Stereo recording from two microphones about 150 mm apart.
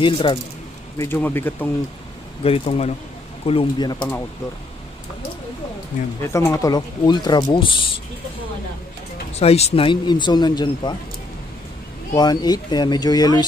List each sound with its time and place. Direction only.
0.0 s speech: 35° left (ahead or behind)
0.9 s speech: 15° left (ahead or behind)
2.4 s speech: 40° left (ahead or behind)
6.2 s speech: 20° left (ahead or behind); by 7.9 s 35° left (ahead or behind)
9.3 s speech: 45° left (ahead or behind)
12.2 s speech: 25° left (ahead or behind)